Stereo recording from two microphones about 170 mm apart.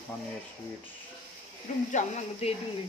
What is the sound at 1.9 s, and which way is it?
Speech, 40° left (ahead or behind).